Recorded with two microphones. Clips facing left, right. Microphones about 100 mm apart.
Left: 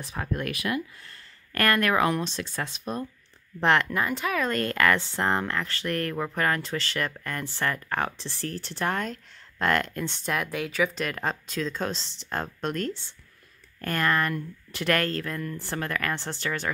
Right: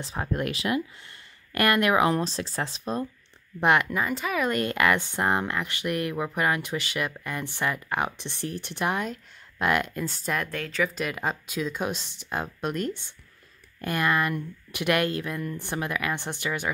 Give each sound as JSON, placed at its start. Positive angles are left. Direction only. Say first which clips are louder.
{"t": 0.0, "sound": "speech", "louder": "right 2 dB", "side_deg": -30}
{"t": 2.1, "sound": "speech", "louder": "right 2 dB", "side_deg": -35}
{"t": 3.6, "sound": "speech", "louder": "even", "side_deg": -10}